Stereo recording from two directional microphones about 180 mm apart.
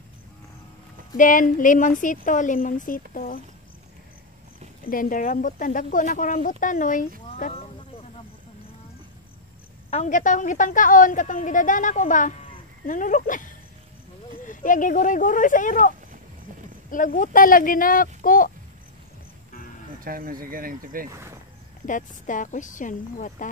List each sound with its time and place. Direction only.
1.1 s speech: 45° left (ahead or behind)
4.8 s speech: 50° left (ahead or behind)
9.8 s speech: 40° left (ahead or behind)
16.9 s speech: 45° left (ahead or behind)
20.0 s speech: 55° right (ahead or behind)
21.8 s speech: 45° left (ahead or behind)